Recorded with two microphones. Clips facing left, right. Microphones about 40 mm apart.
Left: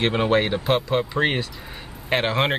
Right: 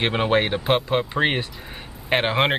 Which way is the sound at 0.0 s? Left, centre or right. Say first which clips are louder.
Even; centre.